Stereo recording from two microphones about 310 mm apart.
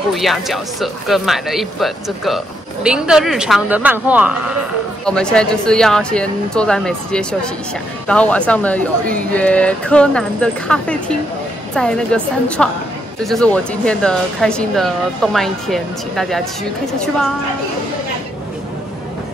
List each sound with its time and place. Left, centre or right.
0.1 s speech: centre